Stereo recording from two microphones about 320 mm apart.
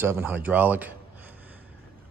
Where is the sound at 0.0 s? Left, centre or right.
Centre.